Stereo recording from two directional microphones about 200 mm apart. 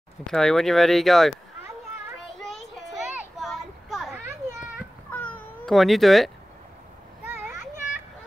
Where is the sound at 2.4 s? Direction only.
Centre (ahead or behind).